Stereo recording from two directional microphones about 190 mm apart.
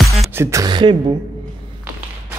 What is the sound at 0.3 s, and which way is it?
Speech, 15° right (ahead or behind).